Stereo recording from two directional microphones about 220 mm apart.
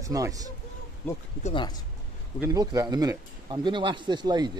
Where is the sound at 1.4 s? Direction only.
25° left (ahead or behind).